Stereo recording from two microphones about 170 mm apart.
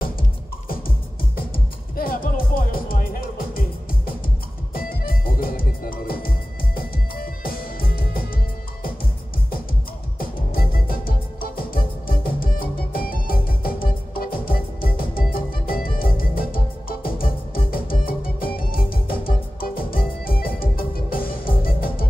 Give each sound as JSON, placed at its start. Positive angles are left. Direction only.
{"t": 0.7, "sound": "music", "side_deg": 55}
{"t": 10.1, "sound": "music", "side_deg": 60}